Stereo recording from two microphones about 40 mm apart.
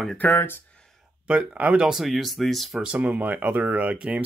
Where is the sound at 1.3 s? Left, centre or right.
Right.